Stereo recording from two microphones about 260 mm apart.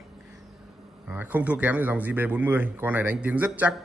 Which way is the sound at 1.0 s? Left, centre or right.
Centre.